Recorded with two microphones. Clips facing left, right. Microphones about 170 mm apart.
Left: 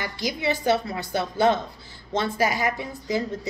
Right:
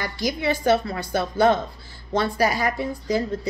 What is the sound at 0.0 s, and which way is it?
A woman's voice, 20° left (ahead or behind).